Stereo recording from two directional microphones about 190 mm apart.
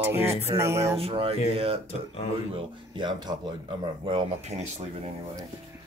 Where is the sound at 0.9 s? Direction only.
30° right (ahead or behind).